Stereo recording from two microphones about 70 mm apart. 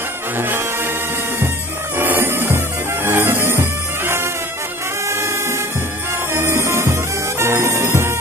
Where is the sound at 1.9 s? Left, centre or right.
Right.